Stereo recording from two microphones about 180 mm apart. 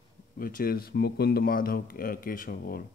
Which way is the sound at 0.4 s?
50° left (ahead or behind).